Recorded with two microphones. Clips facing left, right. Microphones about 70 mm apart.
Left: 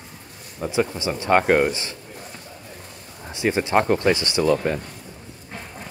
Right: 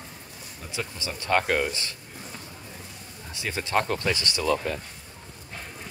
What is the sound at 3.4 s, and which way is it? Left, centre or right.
Speech, left.